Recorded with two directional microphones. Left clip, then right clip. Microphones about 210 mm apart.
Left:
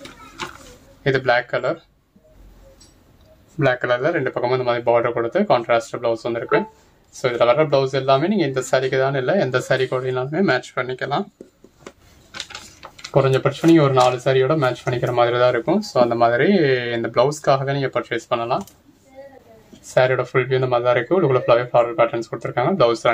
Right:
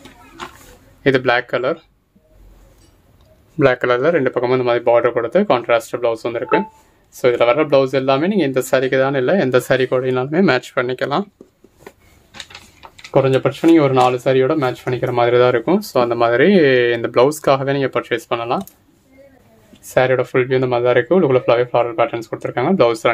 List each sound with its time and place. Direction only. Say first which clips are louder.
1.0 s speech: right 3 dB; 55° right (ahead or behind)
3.5 s speech: right 4 dB; 50° right (ahead or behind)
13.1 s speech: right 3 dB; 40° right (ahead or behind)
19.9 s speech: right 2 dB; 45° right (ahead or behind)